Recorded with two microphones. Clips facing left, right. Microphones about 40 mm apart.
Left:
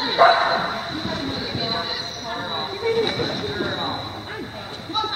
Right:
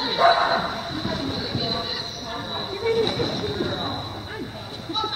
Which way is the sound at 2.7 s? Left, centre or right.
Centre.